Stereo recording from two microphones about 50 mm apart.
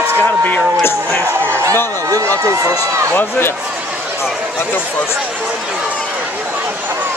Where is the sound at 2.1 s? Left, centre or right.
Right.